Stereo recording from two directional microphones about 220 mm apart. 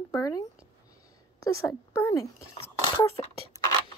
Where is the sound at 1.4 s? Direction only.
10° left (ahead or behind).